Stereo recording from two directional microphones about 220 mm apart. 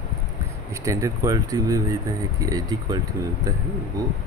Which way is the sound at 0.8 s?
15° right (ahead or behind).